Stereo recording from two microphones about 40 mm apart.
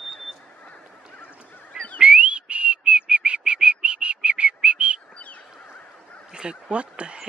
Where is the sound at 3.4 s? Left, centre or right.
Right.